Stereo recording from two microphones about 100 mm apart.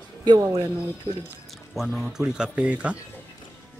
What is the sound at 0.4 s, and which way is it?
Speech, 30° right (ahead or behind).